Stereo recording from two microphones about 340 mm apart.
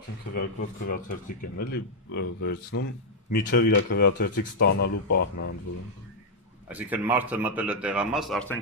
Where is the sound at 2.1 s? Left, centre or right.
Left.